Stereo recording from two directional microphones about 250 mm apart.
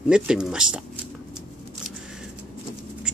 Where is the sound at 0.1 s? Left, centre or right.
Centre.